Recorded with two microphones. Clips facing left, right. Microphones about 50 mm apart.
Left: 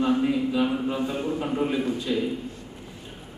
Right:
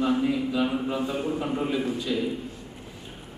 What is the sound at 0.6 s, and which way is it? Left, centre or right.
A man's voice, centre.